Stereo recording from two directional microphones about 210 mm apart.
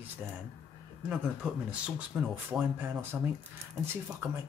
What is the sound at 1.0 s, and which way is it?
Speech, 5° right (ahead or behind).